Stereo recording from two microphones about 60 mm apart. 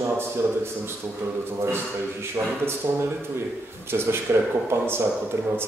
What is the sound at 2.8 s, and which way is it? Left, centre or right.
Speech, right.